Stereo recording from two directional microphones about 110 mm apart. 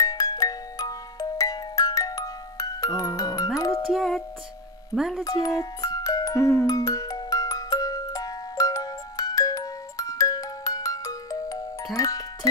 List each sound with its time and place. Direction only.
0.0 s music: 35° left (ahead or behind)
3.9 s music: centre (ahead or behind)
5.2 s music: 35° left (ahead or behind)